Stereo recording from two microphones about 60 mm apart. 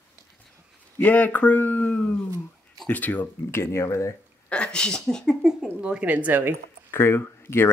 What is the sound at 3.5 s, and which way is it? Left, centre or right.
Speech, left.